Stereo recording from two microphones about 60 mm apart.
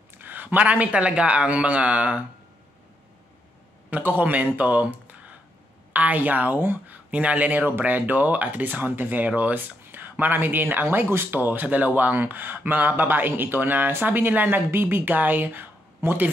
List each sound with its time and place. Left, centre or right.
0.2 s a man's voice: right
3.9 s a man's voice: right